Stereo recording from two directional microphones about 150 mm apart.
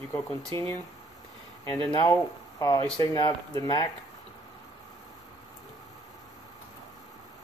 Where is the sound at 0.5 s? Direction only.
35° right (ahead or behind).